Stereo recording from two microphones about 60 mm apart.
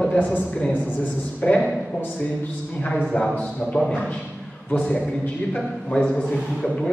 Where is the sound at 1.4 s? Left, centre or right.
Centre.